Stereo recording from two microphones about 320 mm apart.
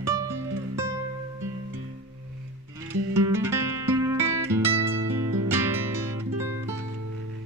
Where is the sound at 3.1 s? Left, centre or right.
Centre.